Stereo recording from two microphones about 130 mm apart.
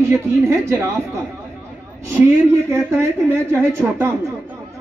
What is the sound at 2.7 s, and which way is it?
A woman's voice, 20° right (ahead or behind).